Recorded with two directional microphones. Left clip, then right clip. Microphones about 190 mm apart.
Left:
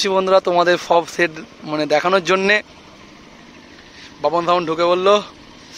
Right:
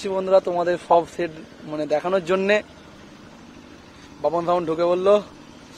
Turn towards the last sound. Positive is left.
turn(degrees=0)  # may be behind; listen again after turning